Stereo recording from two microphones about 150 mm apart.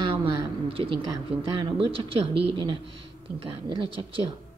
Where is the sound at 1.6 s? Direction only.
35° right (ahead or behind).